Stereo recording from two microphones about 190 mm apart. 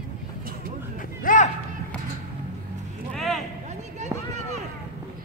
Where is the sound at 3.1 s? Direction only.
Centre (ahead or behind).